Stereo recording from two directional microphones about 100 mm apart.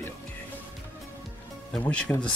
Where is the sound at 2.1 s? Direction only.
20° left (ahead or behind).